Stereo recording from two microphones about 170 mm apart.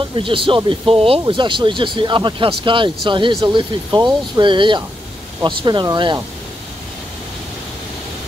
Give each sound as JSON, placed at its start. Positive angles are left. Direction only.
{"t": 0.1, "sound": "speech", "side_deg": -30}